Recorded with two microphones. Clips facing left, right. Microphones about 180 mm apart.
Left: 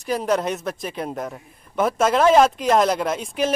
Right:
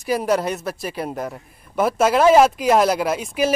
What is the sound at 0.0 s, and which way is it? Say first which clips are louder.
A man's voice: right 2 dB; 5° right (ahead or behind).